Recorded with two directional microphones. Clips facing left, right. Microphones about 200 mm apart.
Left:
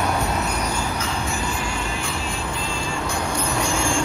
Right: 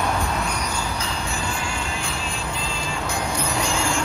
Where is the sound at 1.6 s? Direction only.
25° right (ahead or behind).